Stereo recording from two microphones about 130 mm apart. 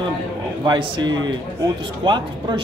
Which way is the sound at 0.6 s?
35° right (ahead or behind).